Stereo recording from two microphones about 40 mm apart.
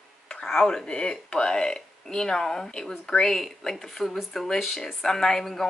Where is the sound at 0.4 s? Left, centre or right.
Centre.